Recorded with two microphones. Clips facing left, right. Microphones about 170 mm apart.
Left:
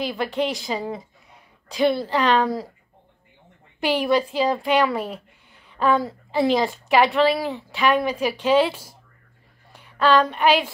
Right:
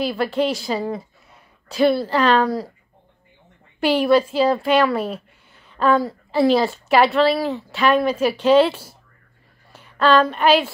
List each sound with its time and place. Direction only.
0.0 s a woman's voice: 15° left (ahead or behind)
3.8 s a woman's voice: 15° left (ahead or behind)